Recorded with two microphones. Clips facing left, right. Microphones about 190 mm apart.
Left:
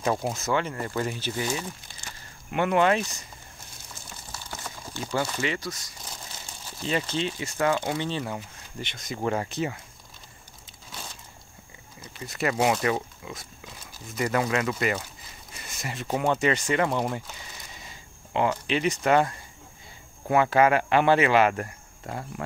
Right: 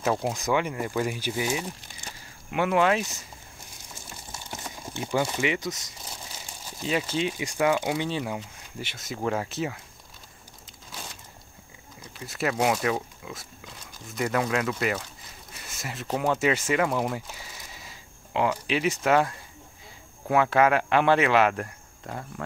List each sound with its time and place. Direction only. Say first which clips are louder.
0.4 s speech: right 1 dB; 15° right (ahead or behind)
2.5 s speech: left 1 dB; 5° right (ahead or behind)
4.3 s crumpling: even; 20° right (ahead or behind)
6.8 s speech: right 1 dB; 5° right (ahead or behind)
12.2 s speech: left 1 dB; centre (ahead or behind)
15.6 s a sound: left 2 dB; centre (ahead or behind)
16.1 s speech: even; centre (ahead or behind)